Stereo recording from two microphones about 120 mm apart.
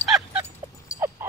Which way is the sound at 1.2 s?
20° right (ahead or behind).